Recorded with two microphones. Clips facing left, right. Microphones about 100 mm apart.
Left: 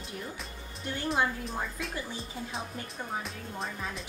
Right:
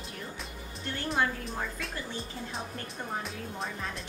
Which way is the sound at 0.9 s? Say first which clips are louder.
Left 1 dB; 15° left (ahead or behind).